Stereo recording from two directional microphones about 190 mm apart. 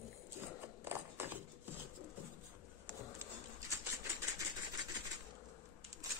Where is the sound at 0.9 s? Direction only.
10° right (ahead or behind).